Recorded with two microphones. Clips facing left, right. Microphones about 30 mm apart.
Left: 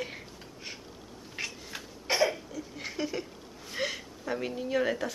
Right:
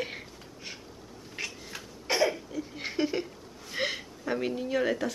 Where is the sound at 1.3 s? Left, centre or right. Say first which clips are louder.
Even; centre.